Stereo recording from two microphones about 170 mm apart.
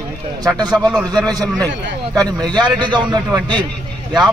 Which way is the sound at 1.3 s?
20° right (ahead or behind).